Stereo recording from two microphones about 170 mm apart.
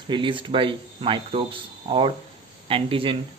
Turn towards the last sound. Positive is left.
turn(degrees=-30)  # may be behind; listen again after turning